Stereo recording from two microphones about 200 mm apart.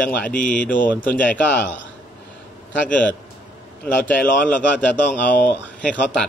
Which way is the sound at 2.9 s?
5° left (ahead or behind).